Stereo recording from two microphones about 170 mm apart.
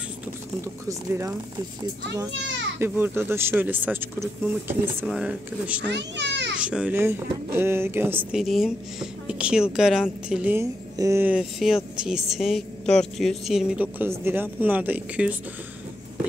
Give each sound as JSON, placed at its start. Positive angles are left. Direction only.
{"t": 0.8, "sound": "speech", "side_deg": -15}
{"t": 2.4, "sound": "children playing", "side_deg": -90}
{"t": 2.8, "sound": "speech", "side_deg": -15}
{"t": 5.9, "sound": "a child's voice", "side_deg": -90}
{"t": 6.6, "sound": "speech", "side_deg": -5}